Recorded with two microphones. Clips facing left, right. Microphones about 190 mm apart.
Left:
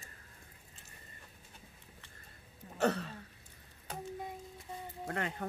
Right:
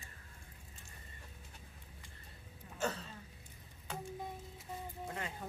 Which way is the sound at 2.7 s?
65° left (ahead or behind).